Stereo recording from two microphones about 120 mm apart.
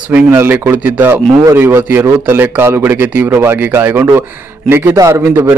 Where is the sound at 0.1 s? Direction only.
15° right (ahead or behind).